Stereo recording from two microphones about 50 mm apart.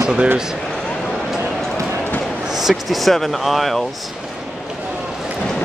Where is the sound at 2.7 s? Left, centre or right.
Centre.